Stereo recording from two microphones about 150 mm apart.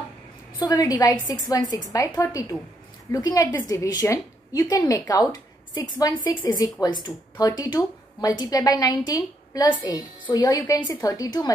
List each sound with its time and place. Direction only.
0.6 s speech: 25° left (ahead or behind)
6.3 s speech: 25° left (ahead or behind)